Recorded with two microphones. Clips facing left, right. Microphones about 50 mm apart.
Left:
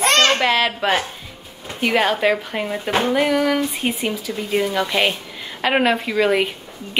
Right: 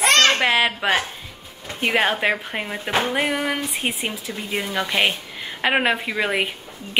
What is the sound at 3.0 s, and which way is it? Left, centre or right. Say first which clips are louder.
A woman's voice: left 6 dB; centre.